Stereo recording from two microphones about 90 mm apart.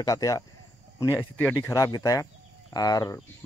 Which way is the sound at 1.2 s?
15° left (ahead or behind).